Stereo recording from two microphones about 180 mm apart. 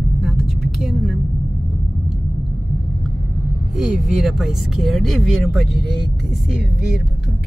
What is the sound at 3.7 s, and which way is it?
Speech, centre (ahead or behind).